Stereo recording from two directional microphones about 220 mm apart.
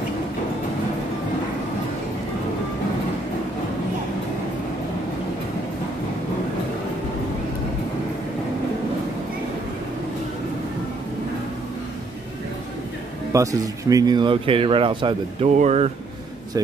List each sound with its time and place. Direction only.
13.3 s speech: 15° right (ahead or behind); by 15.9 s 30° right (ahead or behind)